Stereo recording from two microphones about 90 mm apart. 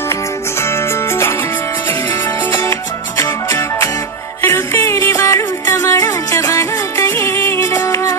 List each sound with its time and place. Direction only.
0.1 s music: 30° left (ahead or behind)
2.5 s music: 30° left (ahead or behind)